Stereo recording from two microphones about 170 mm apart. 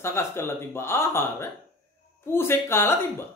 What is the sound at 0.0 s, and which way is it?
Speech, 15° left (ahead or behind).